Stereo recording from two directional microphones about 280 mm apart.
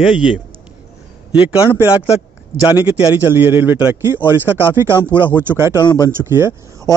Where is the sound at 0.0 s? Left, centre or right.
Centre.